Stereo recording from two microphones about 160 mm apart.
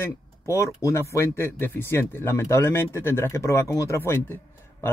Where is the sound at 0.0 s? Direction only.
15° left (ahead or behind).